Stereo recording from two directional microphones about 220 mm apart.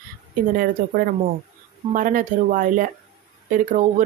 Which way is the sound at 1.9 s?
35° right (ahead or behind).